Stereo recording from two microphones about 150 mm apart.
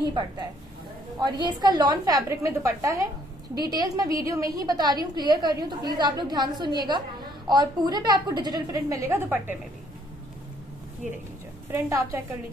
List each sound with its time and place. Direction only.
0.1 s a woman's voice: 30° right (ahead or behind); by 9.6 s 15° right (ahead or behind)
11.7 s a woman's voice: 15° right (ahead or behind)